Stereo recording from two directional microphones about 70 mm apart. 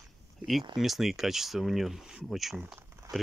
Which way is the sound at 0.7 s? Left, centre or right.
Centre.